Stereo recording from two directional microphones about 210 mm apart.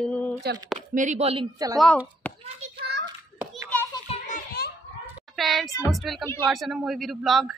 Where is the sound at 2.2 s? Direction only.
5° left (ahead or behind).